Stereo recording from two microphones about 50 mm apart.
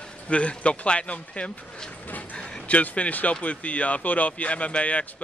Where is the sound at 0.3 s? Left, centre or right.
Left.